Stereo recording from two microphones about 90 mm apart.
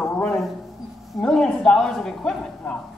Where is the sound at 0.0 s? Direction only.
10° left (ahead or behind).